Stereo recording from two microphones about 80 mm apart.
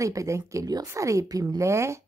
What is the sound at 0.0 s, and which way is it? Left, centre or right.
A woman's voice, right.